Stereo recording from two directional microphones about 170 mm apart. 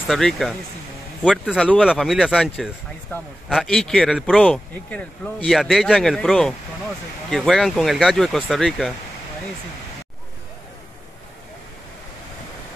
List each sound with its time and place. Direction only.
0.1 s a man's voice: centre (ahead or behind)
3.1 s a man's voice: 10° left (ahead or behind)
3.4 s a man's voice: centre (ahead or behind)